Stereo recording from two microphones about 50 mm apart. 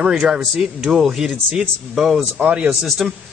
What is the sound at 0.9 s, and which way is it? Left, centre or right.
Speech, centre.